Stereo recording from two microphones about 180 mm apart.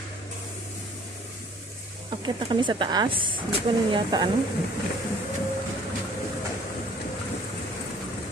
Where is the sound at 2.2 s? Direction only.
25° right (ahead or behind).